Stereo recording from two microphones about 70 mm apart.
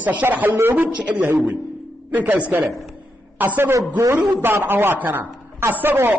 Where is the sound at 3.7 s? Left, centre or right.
Right.